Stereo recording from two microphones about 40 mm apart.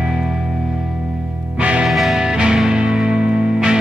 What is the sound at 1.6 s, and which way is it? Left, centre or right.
Music, right.